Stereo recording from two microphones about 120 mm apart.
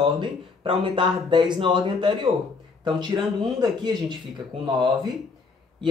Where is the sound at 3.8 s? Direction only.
40° right (ahead or behind).